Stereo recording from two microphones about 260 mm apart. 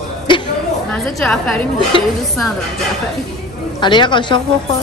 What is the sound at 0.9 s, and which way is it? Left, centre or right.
Speech, centre.